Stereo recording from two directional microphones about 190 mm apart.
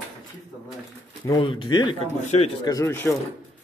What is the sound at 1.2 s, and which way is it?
Speech, 20° left (ahead or behind).